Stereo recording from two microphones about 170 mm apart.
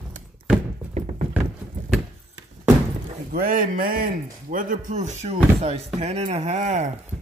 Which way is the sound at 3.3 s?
55° right (ahead or behind).